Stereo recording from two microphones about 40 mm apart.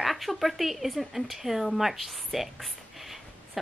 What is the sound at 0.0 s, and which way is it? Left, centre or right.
Speech, centre.